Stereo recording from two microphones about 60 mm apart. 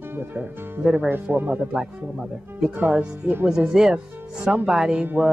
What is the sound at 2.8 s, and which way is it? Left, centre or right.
Speech, right.